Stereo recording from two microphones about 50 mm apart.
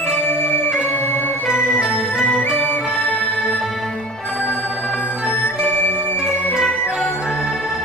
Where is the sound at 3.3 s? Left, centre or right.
Centre.